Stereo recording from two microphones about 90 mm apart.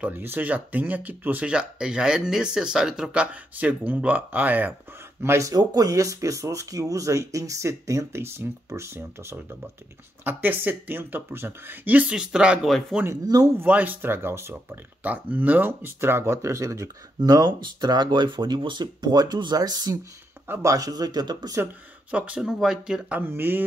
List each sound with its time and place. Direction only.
0.0 s speech: 20° right (ahead or behind)
5.5 s speech: 45° right (ahead or behind); by 12.5 s 10° right (ahead or behind)
13.6 s speech: 20° right (ahead or behind); by 20.0 s 45° right (ahead or behind)
20.4 s speech: 30° right (ahead or behind); by 21.5 s 50° right (ahead or behind)
22.1 s speech: 15° right (ahead or behind)
23.2 s speech: 25° right (ahead or behind)